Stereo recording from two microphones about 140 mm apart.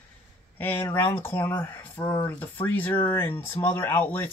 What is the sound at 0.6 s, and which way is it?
Speech, 15° left (ahead or behind).